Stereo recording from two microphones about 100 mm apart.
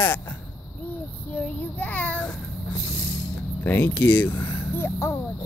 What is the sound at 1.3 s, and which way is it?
Child singing, 15° left (ahead or behind).